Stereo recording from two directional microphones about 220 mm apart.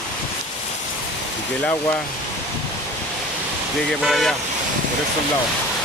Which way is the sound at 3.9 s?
Centre (ahead or behind).